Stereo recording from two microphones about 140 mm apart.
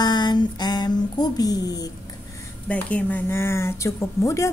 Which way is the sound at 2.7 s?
10° left (ahead or behind).